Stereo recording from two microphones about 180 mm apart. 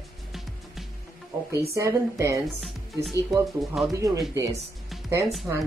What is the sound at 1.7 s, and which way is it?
Speech, 15° right (ahead or behind).